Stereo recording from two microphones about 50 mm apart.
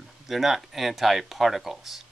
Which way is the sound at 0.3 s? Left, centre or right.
Centre.